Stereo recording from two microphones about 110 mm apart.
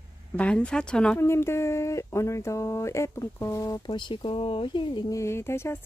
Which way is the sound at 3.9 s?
45° left (ahead or behind).